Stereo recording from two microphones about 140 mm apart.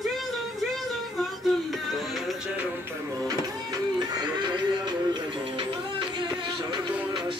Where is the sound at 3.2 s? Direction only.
25° right (ahead or behind).